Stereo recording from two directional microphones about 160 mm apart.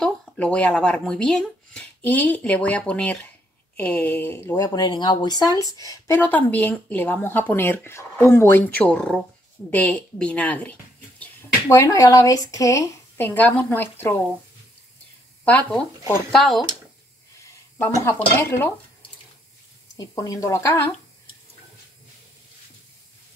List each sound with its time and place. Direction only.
0.0 s speech: 5° left (ahead or behind)
15.4 s speech: 10° left (ahead or behind)
17.4 s speech: 15° left (ahead or behind)
20.0 s speech: 20° left (ahead or behind)